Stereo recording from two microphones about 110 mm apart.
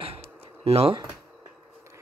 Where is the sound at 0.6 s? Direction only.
70° right (ahead or behind).